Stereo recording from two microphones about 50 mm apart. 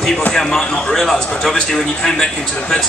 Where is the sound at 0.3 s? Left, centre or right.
Centre.